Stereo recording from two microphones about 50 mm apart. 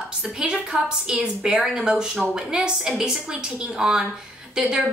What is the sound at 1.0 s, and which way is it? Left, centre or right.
A woman's voice, centre.